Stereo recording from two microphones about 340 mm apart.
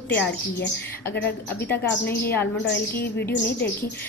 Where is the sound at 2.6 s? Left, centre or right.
Left.